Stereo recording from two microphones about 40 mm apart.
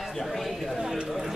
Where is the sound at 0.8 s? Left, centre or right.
Centre.